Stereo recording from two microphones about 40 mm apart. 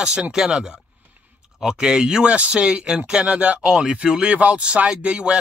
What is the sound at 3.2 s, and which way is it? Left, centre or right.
Speech, right.